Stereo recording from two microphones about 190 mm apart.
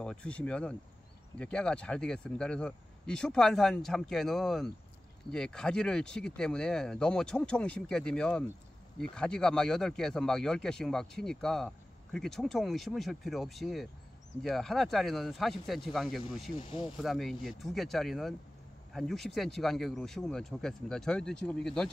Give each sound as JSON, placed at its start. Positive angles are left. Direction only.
{"t": 0.0, "sound": "speech", "side_deg": 5}
{"t": 16.5, "sound": "speech", "side_deg": 25}
{"t": 17.0, "sound": "speech", "side_deg": 0}